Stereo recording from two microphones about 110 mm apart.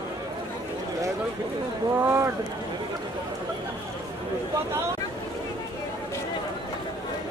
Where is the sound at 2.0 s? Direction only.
25° right (ahead or behind).